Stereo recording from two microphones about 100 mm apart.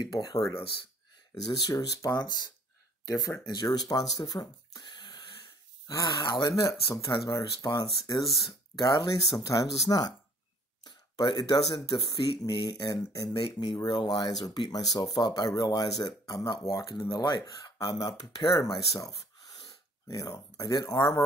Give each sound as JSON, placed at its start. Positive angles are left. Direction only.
{"t": 0.0, "sound": "speech", "side_deg": 40}
{"t": 3.1, "sound": "speech", "side_deg": 35}
{"t": 6.5, "sound": "speech", "side_deg": 30}
{"t": 7.1, "sound": "speech", "side_deg": 45}
{"t": 18.6, "sound": "speech", "side_deg": 35}